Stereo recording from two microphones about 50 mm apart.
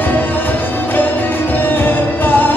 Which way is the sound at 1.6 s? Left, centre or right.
Left.